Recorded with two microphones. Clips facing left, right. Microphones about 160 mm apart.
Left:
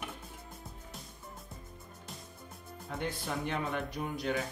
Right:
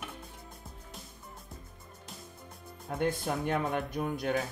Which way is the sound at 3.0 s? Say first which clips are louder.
Right 6 dB; 50° right (ahead or behind).